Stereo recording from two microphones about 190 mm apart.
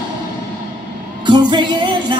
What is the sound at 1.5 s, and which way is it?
Music, 25° right (ahead or behind).